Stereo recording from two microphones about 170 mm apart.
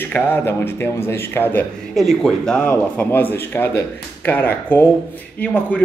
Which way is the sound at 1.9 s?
Centre (ahead or behind).